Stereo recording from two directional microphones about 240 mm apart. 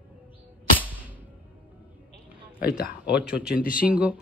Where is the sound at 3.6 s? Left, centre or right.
Left.